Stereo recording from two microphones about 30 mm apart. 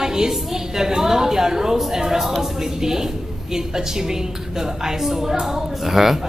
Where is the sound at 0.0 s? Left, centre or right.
Right.